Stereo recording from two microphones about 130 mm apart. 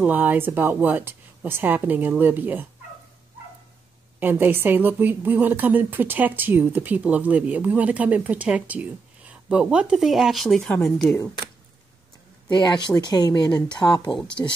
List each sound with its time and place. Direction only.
0.0 s a woman's voice: 15° right (ahead or behind)
4.2 s a woman's voice: 15° right (ahead or behind); by 11.1 s centre (ahead or behind)
12.4 s speech: 35° left (ahead or behind)